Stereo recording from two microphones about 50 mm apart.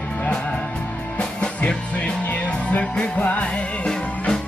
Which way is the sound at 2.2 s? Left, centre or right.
Left.